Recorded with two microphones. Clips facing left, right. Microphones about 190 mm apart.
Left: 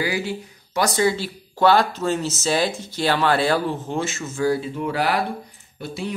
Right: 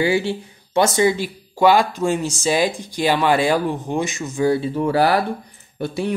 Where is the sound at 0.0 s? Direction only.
30° right (ahead or behind).